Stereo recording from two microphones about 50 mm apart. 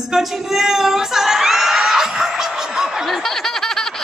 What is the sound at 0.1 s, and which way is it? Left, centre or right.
Whoop, centre.